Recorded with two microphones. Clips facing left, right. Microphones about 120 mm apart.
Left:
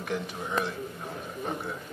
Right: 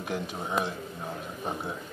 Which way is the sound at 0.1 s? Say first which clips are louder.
Even; 10° right (ahead or behind).